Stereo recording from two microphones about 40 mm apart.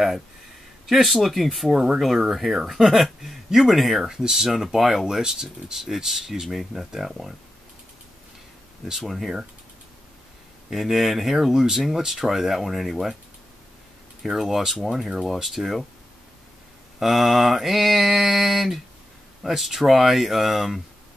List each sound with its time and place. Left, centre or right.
0.8 s mantra: centre
3.5 s speech: centre
8.8 s mantra: centre
10.7 s mantra: centre
14.2 s mantra: centre
17.0 s mantra: centre